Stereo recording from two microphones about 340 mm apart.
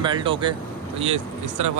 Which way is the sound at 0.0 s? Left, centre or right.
Centre.